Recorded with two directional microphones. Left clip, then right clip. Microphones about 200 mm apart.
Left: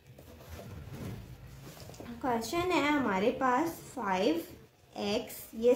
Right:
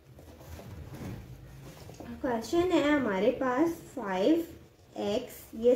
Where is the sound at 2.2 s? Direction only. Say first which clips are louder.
Right 2 dB; 45° left (ahead or behind).